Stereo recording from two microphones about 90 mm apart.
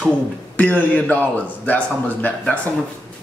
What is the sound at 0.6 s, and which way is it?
A man's voice, 15° left (ahead or behind).